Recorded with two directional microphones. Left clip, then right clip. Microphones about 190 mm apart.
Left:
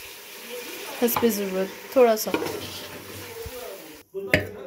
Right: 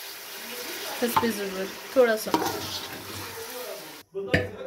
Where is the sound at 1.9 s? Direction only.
15° left (ahead or behind).